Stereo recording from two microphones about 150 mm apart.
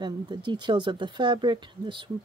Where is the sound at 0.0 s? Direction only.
30° right (ahead or behind).